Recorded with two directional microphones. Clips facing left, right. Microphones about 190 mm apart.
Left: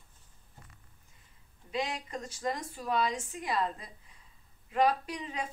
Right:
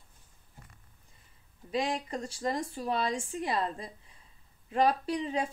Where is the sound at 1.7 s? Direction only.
30° right (ahead or behind).